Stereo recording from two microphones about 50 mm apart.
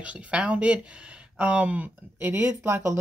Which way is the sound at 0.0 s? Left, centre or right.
Right.